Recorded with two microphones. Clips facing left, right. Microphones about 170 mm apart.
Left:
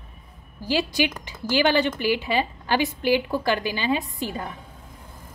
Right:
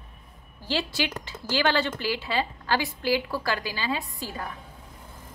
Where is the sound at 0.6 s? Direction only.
15° left (ahead or behind).